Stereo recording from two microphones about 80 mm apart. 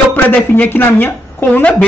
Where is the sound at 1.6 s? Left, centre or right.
Centre.